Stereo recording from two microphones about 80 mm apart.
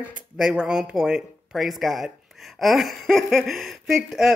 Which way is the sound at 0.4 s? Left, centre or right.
Centre.